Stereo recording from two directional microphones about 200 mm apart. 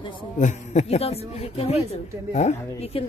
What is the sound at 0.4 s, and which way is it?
A woman's voice, 35° left (ahead or behind).